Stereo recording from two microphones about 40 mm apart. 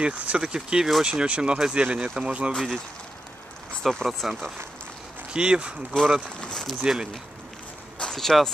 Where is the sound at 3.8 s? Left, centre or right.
Centre.